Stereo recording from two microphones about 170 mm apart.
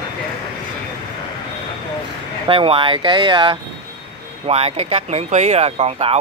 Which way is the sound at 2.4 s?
30° right (ahead or behind).